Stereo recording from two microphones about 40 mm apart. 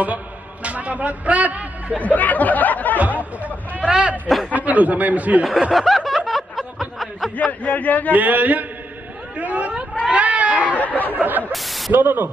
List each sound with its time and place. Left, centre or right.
0.0 s a man's voice: right
2.0 s speech: left
3.8 s a man's voice: right
4.6 s a man's voice: right
5.7 s snicker: centre
7.3 s a man's voice: left
8.1 s a man's voice: right
10.0 s goat: right
10.8 s a man's voice: left
11.1 s speech: right
11.5 s speech: centre
11.9 s speech: right